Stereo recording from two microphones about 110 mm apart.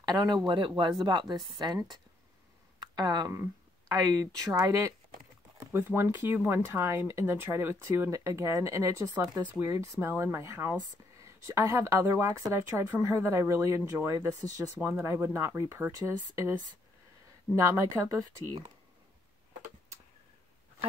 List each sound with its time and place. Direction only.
0.0 s speech: 40° right (ahead or behind)
3.0 s speech: 40° right (ahead or behind)
5.7 s speech: 20° right (ahead or behind)
14.8 s speech: 20° right (ahead or behind)
17.6 s speech: 30° right (ahead or behind)